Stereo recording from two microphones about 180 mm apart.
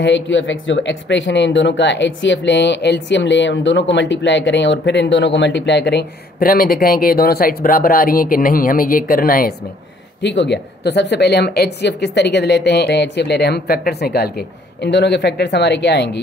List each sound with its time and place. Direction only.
0.0 s speech: 85° left; by 9.5 s 55° left (ahead or behind)
10.2 s speech: 75° left (ahead or behind)